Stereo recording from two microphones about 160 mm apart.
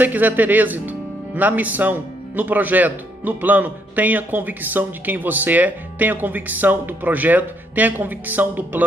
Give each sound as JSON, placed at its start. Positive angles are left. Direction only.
{"t": 0.0, "sound": "speech", "side_deg": -10}